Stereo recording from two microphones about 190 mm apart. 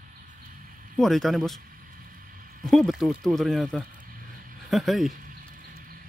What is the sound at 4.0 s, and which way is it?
Vehicle, 45° right (ahead or behind).